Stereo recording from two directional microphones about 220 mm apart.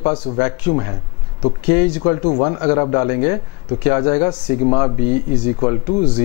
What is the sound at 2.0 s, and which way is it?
Speech, 25° left (ahead or behind).